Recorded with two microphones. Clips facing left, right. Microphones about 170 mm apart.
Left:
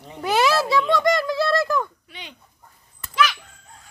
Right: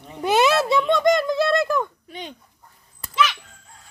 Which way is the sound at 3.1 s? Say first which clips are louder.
Even; 5° left (ahead or behind).